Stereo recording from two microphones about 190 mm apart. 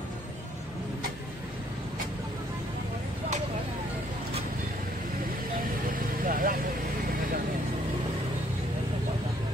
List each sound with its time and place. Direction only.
6.2 s vehicle: 45° right (ahead or behind)